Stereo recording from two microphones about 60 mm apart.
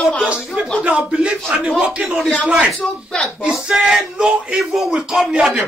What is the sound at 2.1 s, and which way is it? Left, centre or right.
Speech, centre.